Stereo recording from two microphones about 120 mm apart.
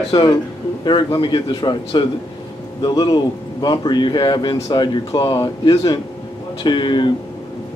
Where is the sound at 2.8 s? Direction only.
40° left (ahead or behind).